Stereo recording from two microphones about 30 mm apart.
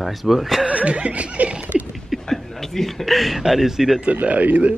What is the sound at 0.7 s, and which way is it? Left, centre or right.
Speech, right.